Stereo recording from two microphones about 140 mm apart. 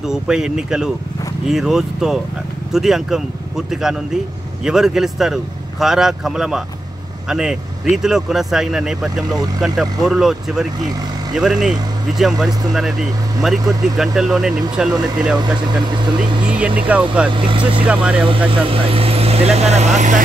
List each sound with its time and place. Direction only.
0.1 s speech: 5° right (ahead or behind)
16.4 s speech: 10° right (ahead or behind)
17.3 s speech: 35° right (ahead or behind)
17.8 s speech: 10° right (ahead or behind)
18.5 s speech: 40° right (ahead or behind)